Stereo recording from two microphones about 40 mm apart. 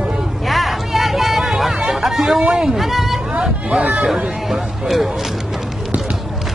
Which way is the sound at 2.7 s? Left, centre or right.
Centre.